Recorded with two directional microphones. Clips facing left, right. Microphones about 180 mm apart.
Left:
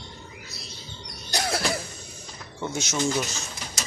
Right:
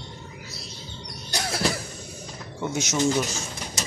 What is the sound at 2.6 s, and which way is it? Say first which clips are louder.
Speech: right 3 dB; 15° right (ahead or behind).